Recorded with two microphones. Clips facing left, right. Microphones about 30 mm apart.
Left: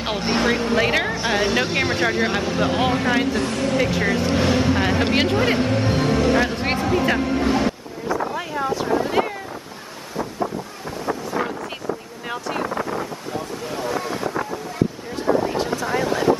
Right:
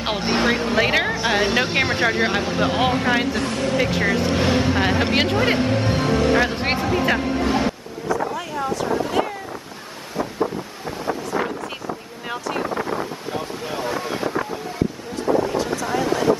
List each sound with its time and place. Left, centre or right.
0.0 s speech: centre
8.4 s a sound: centre
13.3 s speech: centre
14.0 s boat: centre
15.5 s a sound: left
16.0 s speech: centre